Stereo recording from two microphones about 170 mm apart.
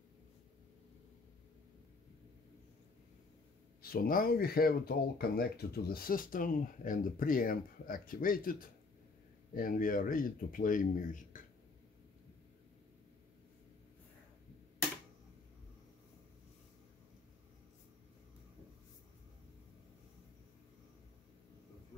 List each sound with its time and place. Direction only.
3.8 s speech: 60° left (ahead or behind)